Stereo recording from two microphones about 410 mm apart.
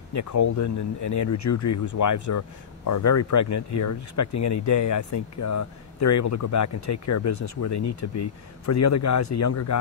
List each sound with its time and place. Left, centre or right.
0.1 s speech: left